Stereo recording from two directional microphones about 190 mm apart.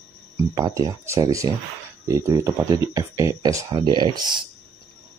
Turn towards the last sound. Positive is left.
turn(degrees=-25)  # may be behind; listen again after turning